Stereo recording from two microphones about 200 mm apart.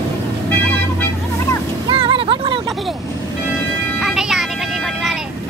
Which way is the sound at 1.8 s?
25° right (ahead or behind).